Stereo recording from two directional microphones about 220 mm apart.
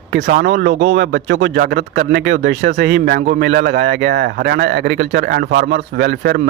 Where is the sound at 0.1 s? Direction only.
45° right (ahead or behind).